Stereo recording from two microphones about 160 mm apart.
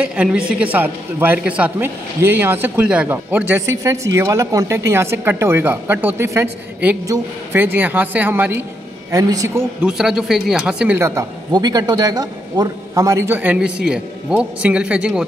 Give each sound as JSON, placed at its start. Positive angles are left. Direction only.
{"t": 0.0, "sound": "a man's voice", "side_deg": -5}
{"t": 9.8, "sound": "speech", "side_deg": -5}
{"t": 11.0, "sound": "speech", "side_deg": -15}